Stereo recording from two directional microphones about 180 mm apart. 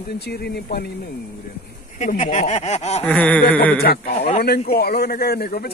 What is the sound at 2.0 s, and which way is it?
Speech, 40° left (ahead or behind).